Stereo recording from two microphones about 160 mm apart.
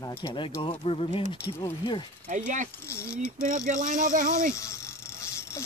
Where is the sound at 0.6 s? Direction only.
35° left (ahead or behind).